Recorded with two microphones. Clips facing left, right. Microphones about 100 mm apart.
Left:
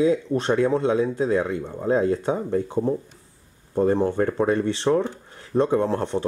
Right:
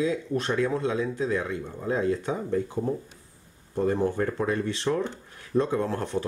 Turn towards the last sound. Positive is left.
turn(degrees=25)  # may be behind; listen again after turning